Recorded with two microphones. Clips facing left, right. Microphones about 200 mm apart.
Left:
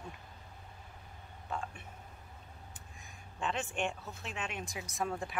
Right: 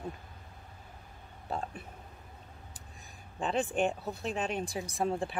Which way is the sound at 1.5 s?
35° right (ahead or behind).